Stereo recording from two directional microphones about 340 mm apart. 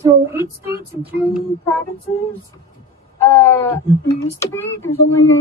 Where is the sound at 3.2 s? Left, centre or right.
Centre.